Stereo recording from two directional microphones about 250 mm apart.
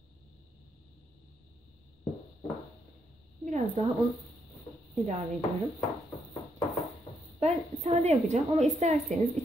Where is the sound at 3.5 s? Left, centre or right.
Right.